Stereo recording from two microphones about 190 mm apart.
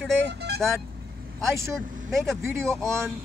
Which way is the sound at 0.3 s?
65° right (ahead or behind).